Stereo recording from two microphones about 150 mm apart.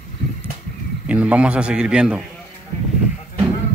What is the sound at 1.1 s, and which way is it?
Speech, 10° right (ahead or behind).